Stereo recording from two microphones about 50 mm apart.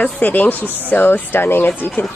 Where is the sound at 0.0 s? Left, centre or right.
Left.